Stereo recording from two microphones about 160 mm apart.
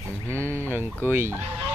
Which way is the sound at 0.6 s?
15° right (ahead or behind).